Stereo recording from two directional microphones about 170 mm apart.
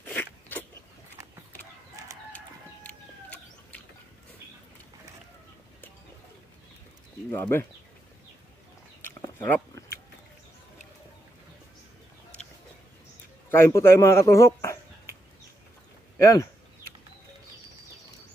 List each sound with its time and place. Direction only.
0.0 s biting: 10° left (ahead or behind)
7.2 s speech: 15° left (ahead or behind)
9.0 s a sound: 15° left (ahead or behind)
13.5 s speech: 15° left (ahead or behind)
16.2 s speech: 20° left (ahead or behind)